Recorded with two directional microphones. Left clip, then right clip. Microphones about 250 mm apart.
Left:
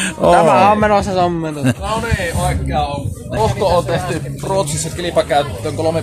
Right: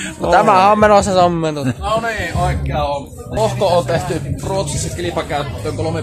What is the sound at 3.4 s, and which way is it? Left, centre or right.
Speech, centre.